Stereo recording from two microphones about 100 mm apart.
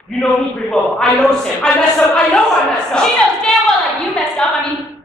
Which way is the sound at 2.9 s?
5° left (ahead or behind).